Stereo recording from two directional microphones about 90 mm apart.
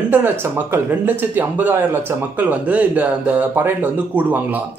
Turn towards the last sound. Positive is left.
turn(degrees=-20)  # may be behind; listen again after turning